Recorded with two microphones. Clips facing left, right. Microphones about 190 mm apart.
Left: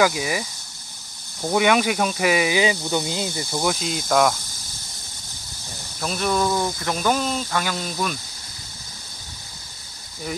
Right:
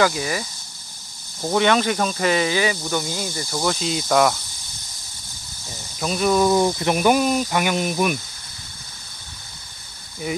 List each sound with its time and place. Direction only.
0.0 s speech: 10° left (ahead or behind)
1.5 s speech: 10° left (ahead or behind)
3.6 s speech: 5° left (ahead or behind)
5.9 s speech: centre (ahead or behind)
6.4 s speech: 20° right (ahead or behind)